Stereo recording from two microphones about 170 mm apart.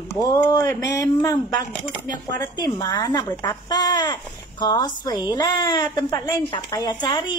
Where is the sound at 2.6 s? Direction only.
20° left (ahead or behind).